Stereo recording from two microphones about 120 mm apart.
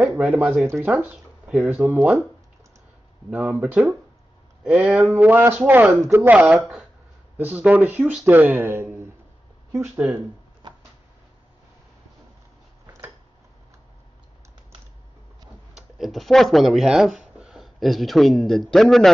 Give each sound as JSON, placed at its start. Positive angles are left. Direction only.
{"t": 0.1, "sound": "speech", "side_deg": -10}
{"t": 3.3, "sound": "speech", "side_deg": -10}
{"t": 10.6, "sound": "a sound", "side_deg": -40}
{"t": 15.7, "sound": "speech", "side_deg": 0}